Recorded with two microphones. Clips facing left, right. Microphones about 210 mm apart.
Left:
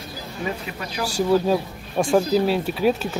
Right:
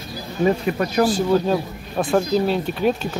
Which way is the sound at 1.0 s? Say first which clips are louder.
Right 1 dB; 10° left (ahead or behind).